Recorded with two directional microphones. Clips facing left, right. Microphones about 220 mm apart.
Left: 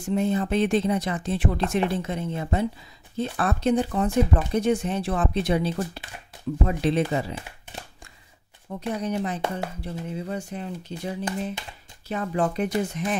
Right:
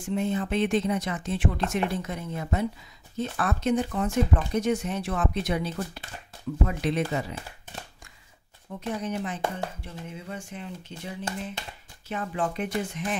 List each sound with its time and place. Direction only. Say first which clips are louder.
0.0 s speech: left 4 dB; 40° left (ahead or behind)
6.8 s speech: left 6 dB; 30° left (ahead or behind)
8.6 s speech: left 3 dB; 40° left (ahead or behind)